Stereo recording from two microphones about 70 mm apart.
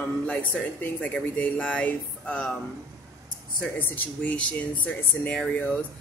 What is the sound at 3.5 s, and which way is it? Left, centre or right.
Speech, centre.